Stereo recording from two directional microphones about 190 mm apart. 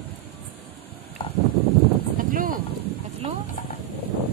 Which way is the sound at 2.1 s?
45° right (ahead or behind).